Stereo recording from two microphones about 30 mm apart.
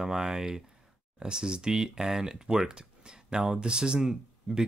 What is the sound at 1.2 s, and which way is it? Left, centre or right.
Speech, right.